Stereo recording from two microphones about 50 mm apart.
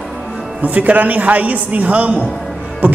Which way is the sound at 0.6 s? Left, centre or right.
Right.